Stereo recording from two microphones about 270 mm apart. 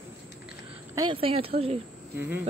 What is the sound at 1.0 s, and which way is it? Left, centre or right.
Speech, centre.